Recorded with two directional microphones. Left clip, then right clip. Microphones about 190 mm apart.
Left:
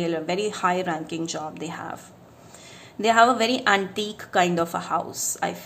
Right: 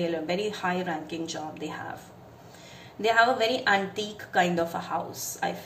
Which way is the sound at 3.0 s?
50° left (ahead or behind).